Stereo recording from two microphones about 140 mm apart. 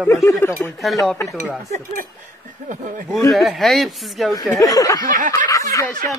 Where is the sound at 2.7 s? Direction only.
65° right (ahead or behind).